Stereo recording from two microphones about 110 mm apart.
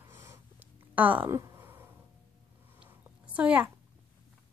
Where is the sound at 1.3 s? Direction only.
25° right (ahead or behind).